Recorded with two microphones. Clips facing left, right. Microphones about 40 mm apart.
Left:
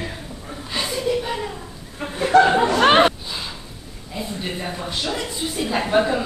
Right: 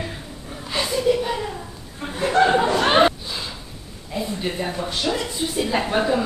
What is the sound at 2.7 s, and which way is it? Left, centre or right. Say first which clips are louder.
Chuckle: left 2 dB; left.